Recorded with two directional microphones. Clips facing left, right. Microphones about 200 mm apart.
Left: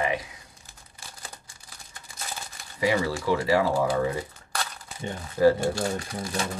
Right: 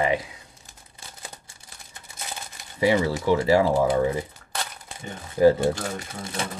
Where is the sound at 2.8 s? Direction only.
25° right (ahead or behind).